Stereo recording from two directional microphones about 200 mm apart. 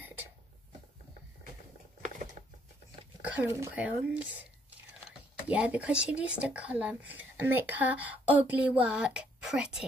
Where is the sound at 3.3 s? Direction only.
10° right (ahead or behind).